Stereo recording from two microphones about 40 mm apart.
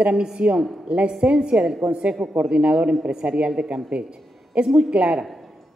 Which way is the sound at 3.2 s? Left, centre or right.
Right.